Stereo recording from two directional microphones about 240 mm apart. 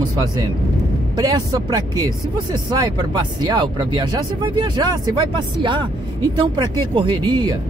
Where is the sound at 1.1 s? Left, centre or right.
Centre.